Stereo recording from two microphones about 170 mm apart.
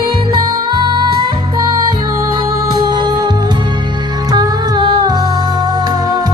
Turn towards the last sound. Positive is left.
turn(degrees=-25)  # may be behind; listen again after turning